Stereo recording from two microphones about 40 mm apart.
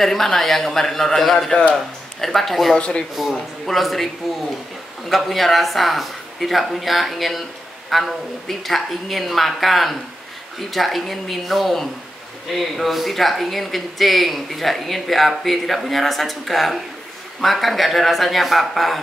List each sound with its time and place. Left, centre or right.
0.0 s a man's voice: centre
2.8 s speech: left
3.3 s speech: centre
5.1 s speech: centre